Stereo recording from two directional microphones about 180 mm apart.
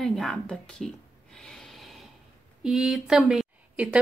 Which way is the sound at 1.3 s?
5° left (ahead or behind).